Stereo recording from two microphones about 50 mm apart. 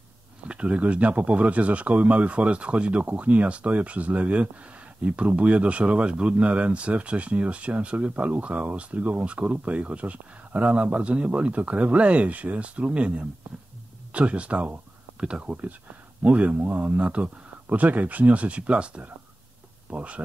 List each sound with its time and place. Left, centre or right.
0.5 s speech: right